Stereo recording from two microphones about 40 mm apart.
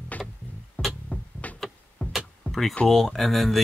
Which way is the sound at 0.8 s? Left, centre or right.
Left.